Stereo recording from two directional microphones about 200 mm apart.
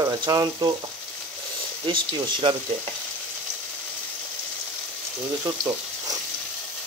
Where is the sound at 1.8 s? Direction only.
25° right (ahead or behind).